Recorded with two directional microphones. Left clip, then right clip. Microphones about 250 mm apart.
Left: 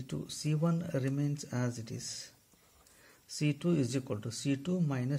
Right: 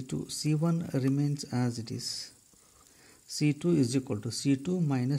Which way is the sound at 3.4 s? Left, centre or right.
Right.